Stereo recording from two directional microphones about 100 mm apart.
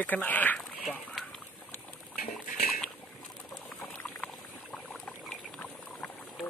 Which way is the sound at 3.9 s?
10° left (ahead or behind).